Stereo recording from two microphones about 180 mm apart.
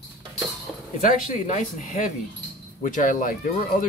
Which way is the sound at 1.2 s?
45° left (ahead or behind).